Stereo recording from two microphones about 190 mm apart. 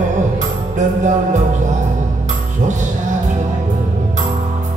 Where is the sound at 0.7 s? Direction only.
40° right (ahead or behind).